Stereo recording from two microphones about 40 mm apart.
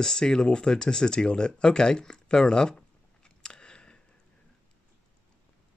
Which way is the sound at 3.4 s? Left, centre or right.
Left.